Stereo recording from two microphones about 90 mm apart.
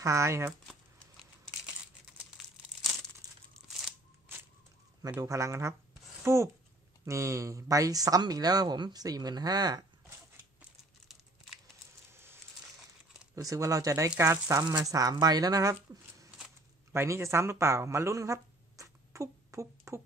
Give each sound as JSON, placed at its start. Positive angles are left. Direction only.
{"t": 0.0, "sound": "speech", "side_deg": -35}
{"t": 1.7, "sound": "crumpling", "side_deg": 0}
{"t": 5.2, "sound": "speech", "side_deg": -35}
{"t": 12.1, "sound": "a sound", "side_deg": -25}
{"t": 13.3, "sound": "speech", "side_deg": -40}
{"t": 14.9, "sound": "speech", "side_deg": -40}